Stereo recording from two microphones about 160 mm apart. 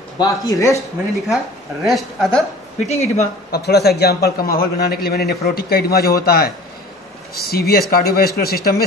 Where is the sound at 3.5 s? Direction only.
90° left.